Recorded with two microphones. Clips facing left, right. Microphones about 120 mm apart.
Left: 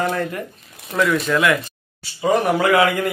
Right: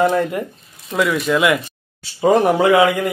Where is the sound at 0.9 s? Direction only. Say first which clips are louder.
Right 1 dB; 10° right (ahead or behind).